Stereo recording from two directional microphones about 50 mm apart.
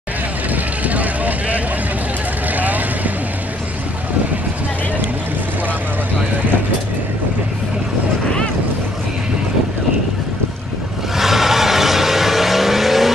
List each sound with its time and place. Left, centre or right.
0.5 s vehicle: right
11.1 s vehicle: centre